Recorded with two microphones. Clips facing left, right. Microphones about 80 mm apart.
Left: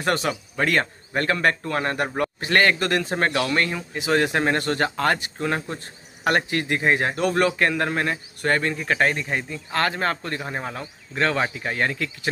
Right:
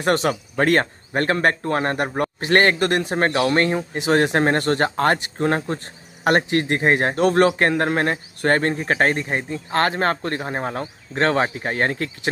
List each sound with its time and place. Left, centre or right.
0.0 s a man's voice: right